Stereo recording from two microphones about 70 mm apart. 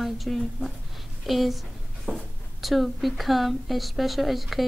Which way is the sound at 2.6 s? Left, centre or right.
Centre.